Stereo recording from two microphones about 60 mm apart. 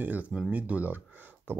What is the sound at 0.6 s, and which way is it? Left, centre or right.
Speech, right.